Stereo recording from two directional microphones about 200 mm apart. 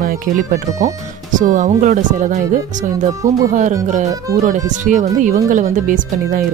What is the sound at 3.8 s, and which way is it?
Speech, 35° right (ahead or behind).